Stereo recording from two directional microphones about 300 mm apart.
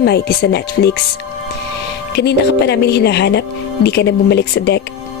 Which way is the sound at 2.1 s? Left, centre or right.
Left.